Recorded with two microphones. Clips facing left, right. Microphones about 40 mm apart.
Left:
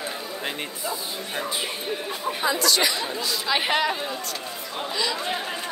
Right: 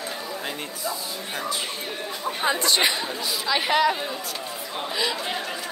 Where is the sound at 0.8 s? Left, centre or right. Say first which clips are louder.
Right 1 dB; left.